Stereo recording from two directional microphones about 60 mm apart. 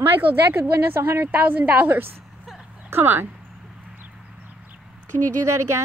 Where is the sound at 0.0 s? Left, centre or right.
Right.